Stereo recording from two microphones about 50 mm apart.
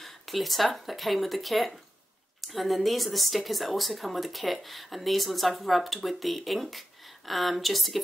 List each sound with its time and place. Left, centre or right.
0.0 s speech: centre